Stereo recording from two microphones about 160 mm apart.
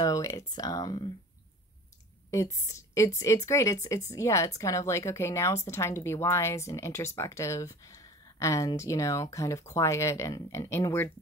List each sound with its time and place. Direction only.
0.0 s a woman's voice: 20° left (ahead or behind)
2.3 s a woman's voice: 20° left (ahead or behind)